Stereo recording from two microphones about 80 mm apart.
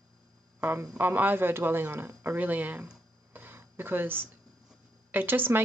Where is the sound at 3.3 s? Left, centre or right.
Right.